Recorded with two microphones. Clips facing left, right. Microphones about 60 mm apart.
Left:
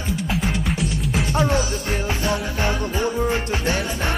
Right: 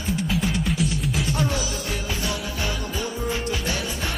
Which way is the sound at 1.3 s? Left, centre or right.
Left.